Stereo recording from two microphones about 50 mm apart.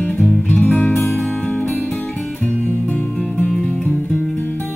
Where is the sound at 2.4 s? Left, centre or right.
Left.